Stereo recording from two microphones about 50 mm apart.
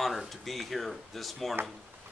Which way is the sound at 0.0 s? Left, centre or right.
Centre.